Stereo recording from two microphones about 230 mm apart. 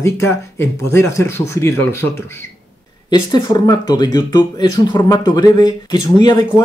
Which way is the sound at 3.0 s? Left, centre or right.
Centre.